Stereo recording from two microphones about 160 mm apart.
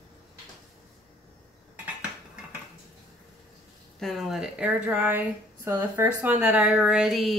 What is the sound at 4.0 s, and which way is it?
Speech, centre (ahead or behind).